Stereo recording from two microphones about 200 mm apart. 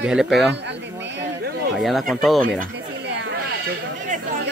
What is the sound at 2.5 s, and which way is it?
Chatter, 55° right (ahead or behind).